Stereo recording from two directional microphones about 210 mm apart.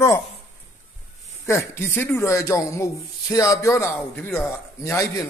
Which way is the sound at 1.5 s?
15° left (ahead or behind).